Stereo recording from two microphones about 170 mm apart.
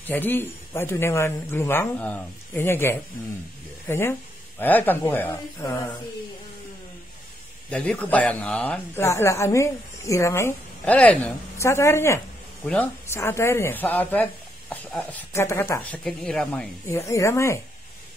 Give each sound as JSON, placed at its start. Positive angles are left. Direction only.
{"t": 0.0, "sound": "speech", "side_deg": 10}
{"t": 7.7, "sound": "speech", "side_deg": 10}
{"t": 16.8, "sound": "speech", "side_deg": 15}